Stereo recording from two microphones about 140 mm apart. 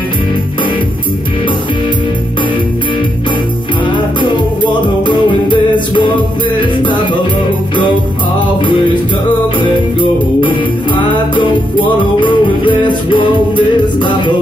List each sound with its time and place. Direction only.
3.8 s music: 35° left (ahead or behind)
9.6 s music: 35° left (ahead or behind)